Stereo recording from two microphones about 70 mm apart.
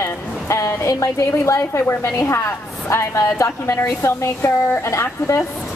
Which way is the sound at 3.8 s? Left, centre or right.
Left.